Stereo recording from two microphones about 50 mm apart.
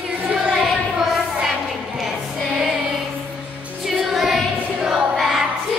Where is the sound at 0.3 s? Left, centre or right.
Centre.